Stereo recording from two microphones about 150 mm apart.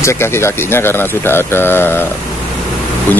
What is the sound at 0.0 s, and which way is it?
Speech, 15° left (ahead or behind).